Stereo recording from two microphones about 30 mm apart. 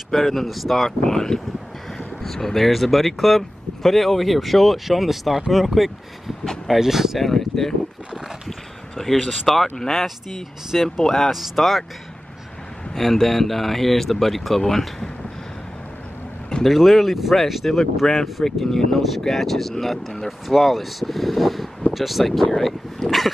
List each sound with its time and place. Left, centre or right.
0.1 s speech: centre
0.8 s speech: centre
7.2 s speech: centre
8.5 s a sound: centre
9.5 s speech: centre
12.9 s speech: centre
16.6 s speech: centre
17.6 s speech: left
18.4 s speech: centre
22.2 s speech: centre